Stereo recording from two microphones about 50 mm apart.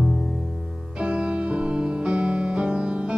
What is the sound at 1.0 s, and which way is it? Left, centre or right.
Music, right.